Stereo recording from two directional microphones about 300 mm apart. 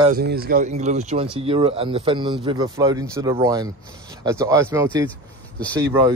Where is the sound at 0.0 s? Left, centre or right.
Right; by 5.0 s centre.